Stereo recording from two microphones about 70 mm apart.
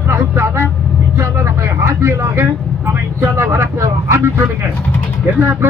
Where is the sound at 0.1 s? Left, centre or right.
Right.